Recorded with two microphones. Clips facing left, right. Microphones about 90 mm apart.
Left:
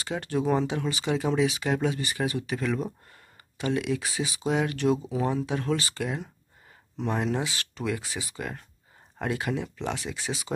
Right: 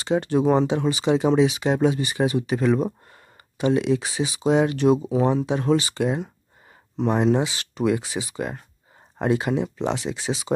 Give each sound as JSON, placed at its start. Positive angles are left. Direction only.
{"t": 0.0, "sound": "speech", "side_deg": -25}